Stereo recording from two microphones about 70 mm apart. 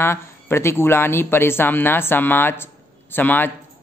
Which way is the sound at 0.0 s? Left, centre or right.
Left.